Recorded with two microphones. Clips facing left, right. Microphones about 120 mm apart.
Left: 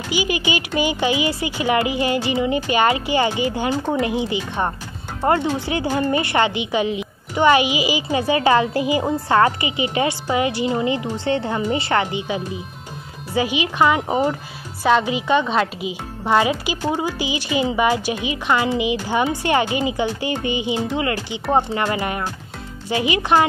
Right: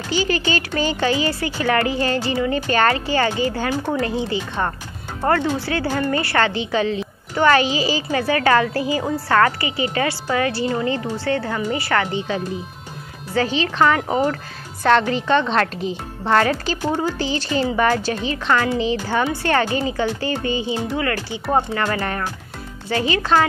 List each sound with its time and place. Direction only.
0.1 s a woman's voice: 15° left (ahead or behind)